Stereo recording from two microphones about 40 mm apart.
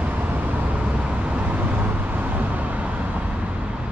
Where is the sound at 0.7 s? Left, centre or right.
Right.